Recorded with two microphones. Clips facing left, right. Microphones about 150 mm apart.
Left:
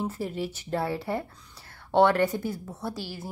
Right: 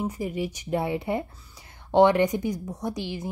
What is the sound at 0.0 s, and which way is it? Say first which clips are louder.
Speech: right 2 dB; 15° right (ahead or behind).